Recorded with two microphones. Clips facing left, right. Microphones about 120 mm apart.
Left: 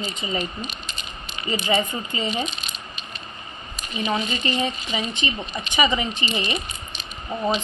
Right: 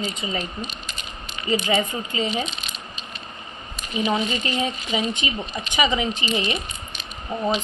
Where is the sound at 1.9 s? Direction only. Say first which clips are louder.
Right 1 dB; 5° right (ahead or behind).